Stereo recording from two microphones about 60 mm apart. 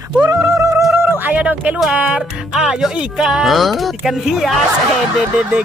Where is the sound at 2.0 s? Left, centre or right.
Right.